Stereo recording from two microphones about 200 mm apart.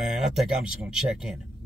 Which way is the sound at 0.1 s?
Centre (ahead or behind).